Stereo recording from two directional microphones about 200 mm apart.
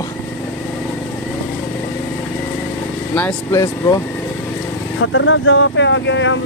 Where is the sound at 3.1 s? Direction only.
10° left (ahead or behind).